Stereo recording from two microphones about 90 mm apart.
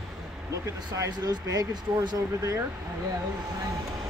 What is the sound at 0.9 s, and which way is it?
Speech, 40° right (ahead or behind).